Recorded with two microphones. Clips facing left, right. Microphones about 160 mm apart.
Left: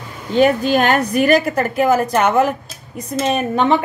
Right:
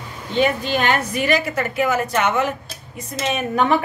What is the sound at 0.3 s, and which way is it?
A woman's voice, 45° left (ahead or behind).